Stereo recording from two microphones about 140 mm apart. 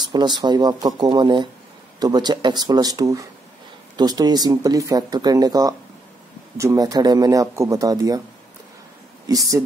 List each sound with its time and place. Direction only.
0.1 s speech: 30° right (ahead or behind)
9.3 s speech: 25° right (ahead or behind)